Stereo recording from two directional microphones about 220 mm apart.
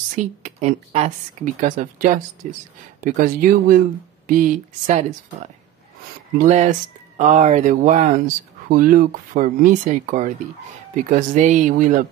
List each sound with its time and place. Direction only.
0.1 s speech: 35° right (ahead or behind)
6.3 s speech: 35° right (ahead or behind)